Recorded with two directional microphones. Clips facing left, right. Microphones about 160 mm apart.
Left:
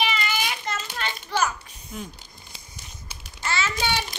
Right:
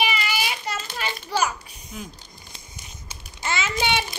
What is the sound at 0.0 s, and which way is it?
Child singing, 10° right (ahead or behind).